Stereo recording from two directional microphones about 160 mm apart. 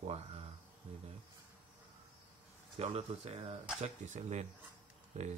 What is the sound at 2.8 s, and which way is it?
Speech, 40° right (ahead or behind).